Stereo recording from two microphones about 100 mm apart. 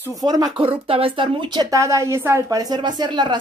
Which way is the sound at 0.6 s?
65° right (ahead or behind).